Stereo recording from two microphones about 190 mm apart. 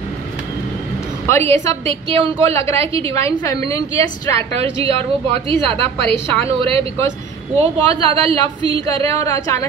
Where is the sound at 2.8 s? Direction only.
30° right (ahead or behind).